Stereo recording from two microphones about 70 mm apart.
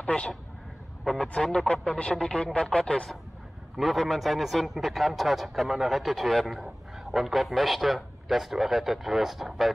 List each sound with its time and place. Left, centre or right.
0.0 s a man's voice: centre